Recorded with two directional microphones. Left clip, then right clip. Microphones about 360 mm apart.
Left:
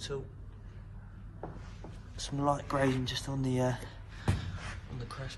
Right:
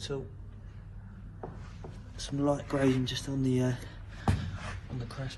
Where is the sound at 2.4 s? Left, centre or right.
Left.